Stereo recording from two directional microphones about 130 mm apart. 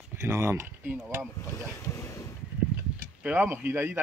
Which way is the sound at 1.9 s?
25° left (ahead or behind).